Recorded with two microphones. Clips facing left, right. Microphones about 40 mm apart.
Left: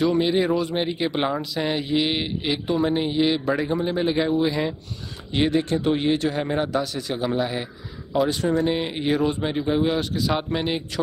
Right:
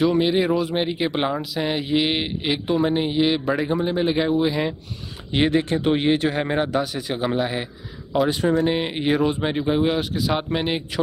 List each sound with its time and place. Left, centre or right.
0.0 s speech: centre